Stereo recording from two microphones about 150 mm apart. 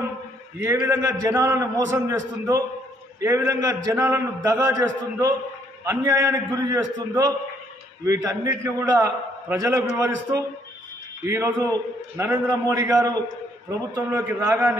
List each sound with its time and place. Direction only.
0.6 s a man's voice: 15° right (ahead or behind)